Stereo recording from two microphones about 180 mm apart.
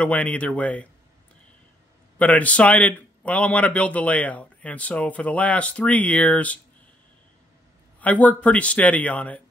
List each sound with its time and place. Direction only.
0.0 s speech: 10° left (ahead or behind)
2.1 s speech: 10° left (ahead or behind)
8.0 s speech: 10° left (ahead or behind)